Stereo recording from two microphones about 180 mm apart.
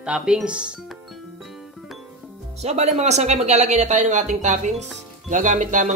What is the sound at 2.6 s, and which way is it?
Speech, 40° right (ahead or behind).